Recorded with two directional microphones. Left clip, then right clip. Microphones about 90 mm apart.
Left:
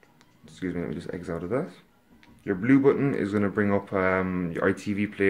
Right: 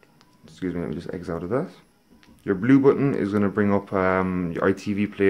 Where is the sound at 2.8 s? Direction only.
30° right (ahead or behind).